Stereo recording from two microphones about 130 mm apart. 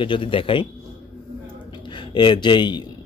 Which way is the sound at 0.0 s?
40° left (ahead or behind).